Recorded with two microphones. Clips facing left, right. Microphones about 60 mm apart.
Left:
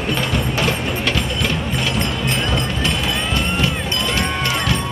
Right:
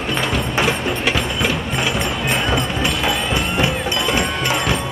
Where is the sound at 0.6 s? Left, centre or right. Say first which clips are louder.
Right 4 dB; centre.